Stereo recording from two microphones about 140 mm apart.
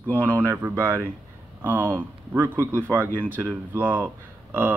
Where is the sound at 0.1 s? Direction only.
15° right (ahead or behind).